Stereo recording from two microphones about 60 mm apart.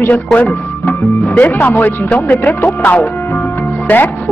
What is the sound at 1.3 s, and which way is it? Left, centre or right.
Speech, left.